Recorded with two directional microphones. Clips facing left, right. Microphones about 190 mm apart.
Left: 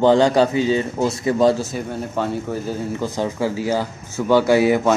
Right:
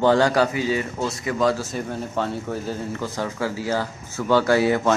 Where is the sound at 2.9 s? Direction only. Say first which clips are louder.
Left 4 dB; 15° left (ahead or behind).